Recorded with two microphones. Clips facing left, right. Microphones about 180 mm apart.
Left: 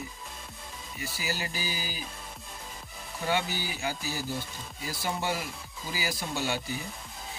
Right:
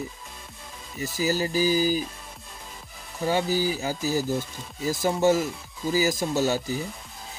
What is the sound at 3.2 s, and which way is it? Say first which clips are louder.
Speech: right 7 dB; 40° right (ahead or behind).